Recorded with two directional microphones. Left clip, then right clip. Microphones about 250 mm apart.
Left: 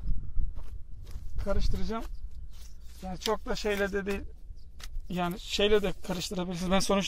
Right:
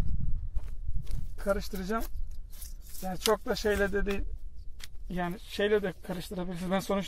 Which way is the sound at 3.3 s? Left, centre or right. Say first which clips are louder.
Right 2 dB; right.